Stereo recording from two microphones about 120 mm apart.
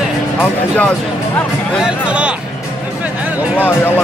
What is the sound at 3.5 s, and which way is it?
Speech, 15° left (ahead or behind).